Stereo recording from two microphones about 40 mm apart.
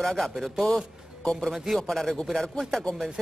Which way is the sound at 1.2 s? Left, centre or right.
Centre.